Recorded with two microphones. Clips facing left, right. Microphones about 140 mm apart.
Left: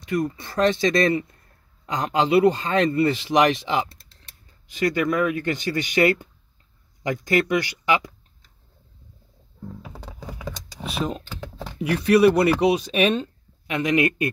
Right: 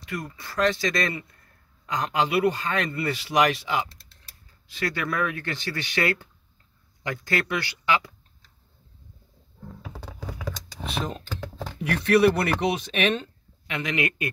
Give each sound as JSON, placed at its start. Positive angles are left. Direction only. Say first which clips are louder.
{"t": 0.0, "sound": "speech", "louder": "left 10 dB", "side_deg": 20}
{"t": 9.8, "sound": "a sound", "louder": "even", "side_deg": 15}
{"t": 10.5, "sound": "speech", "louder": "right 1 dB", "side_deg": 10}